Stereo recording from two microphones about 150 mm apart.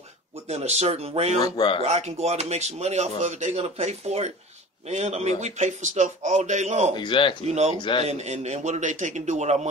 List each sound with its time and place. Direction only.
0.5 s speech: 45° right (ahead or behind)
1.4 s speech: 30° left (ahead or behind)
1.8 s speech: 45° right (ahead or behind)
7.0 s speech: 35° left (ahead or behind)
7.4 s speech: 45° right (ahead or behind)
7.7 s speech: 30° left (ahead or behind)
8.0 s speech: 45° right (ahead or behind)